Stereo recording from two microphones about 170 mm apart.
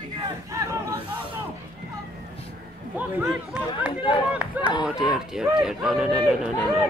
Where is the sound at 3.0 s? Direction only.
10° right (ahead or behind).